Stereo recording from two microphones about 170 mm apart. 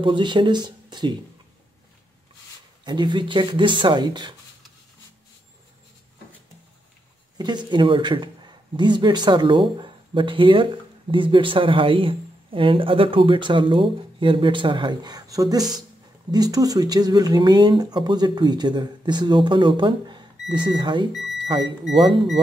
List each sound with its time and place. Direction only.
0.0 s a man's voice: 30° right (ahead or behind)
2.8 s a man's voice: 25° right (ahead or behind)
7.3 s a man's voice: 25° right (ahead or behind)
21.9 s speech: centre (ahead or behind)